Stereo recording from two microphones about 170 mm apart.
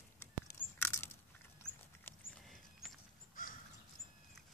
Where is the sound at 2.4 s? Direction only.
Centre (ahead or behind).